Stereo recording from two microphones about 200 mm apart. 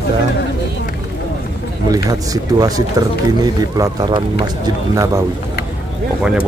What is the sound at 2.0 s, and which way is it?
Speech, 20° right (ahead or behind).